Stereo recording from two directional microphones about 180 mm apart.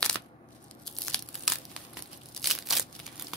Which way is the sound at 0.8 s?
5° left (ahead or behind).